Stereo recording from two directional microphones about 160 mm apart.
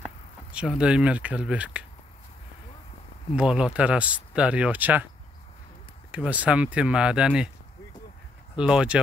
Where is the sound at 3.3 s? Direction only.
5° right (ahead or behind).